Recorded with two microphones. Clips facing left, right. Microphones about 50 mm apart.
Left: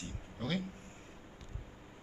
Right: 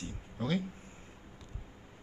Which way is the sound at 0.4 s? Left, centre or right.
Right.